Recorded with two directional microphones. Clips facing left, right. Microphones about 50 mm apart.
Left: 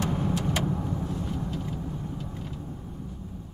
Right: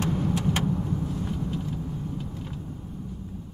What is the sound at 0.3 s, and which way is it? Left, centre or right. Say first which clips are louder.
Vehicle: right 2 dB; right.